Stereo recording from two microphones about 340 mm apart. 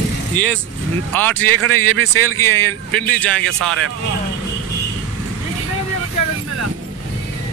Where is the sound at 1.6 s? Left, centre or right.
Right.